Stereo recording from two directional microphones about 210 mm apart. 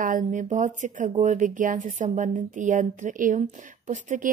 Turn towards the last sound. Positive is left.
turn(degrees=-35)  # may be behind; listen again after turning